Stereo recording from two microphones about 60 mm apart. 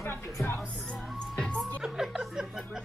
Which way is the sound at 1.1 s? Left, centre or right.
Centre.